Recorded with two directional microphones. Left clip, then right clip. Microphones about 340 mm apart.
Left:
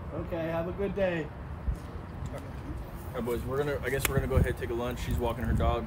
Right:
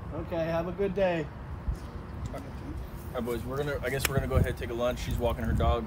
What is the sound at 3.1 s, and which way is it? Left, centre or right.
Speech, centre.